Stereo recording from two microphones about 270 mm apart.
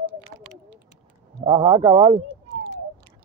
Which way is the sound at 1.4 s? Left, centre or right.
Centre.